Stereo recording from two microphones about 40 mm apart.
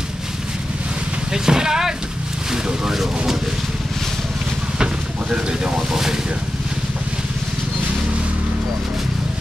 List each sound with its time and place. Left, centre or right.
1.3 s speech: centre